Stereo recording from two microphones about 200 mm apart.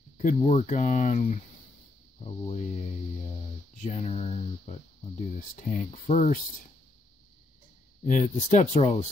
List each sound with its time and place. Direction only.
0.2 s speech: 40° left (ahead or behind)
3.8 s speech: 30° left (ahead or behind)
8.0 s speech: 40° left (ahead or behind)